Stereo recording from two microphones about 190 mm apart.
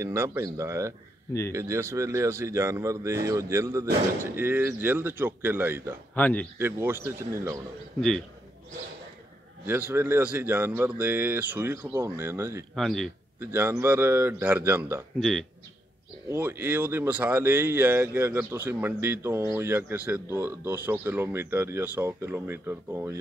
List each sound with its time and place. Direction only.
0.0 s speech: 15° right (ahead or behind)
6.1 s speech: 10° left (ahead or behind)
6.6 s speech: 10° right (ahead or behind)
9.7 s speech: 10° right (ahead or behind)
12.7 s a man's voice: centre (ahead or behind)
13.4 s speech: 10° right (ahead or behind)
15.1 s a man's voice: centre (ahead or behind)
16.3 s speech: 10° right (ahead or behind)